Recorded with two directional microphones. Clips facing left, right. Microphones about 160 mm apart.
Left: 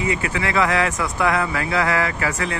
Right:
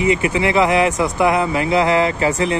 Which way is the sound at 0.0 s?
20° right (ahead or behind).